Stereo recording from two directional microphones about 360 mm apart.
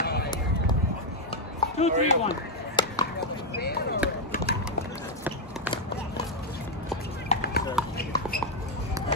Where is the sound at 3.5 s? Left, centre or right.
Left.